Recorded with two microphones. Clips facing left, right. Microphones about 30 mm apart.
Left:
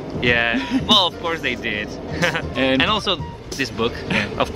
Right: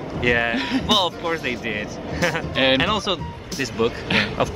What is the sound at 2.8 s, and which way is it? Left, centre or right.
Speech, left.